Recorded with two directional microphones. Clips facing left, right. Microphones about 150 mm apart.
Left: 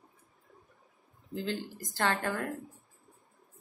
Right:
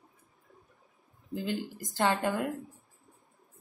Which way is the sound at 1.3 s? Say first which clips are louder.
Right 2 dB; 15° right (ahead or behind).